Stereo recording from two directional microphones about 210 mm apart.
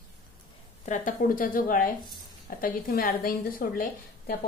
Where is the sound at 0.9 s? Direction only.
40° left (ahead or behind).